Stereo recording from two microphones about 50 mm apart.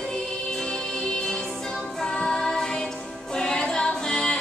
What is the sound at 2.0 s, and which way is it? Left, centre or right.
Music, centre.